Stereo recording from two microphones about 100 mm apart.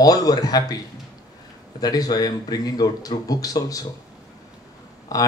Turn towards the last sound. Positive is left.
turn(degrees=35)  # may be behind; listen again after turning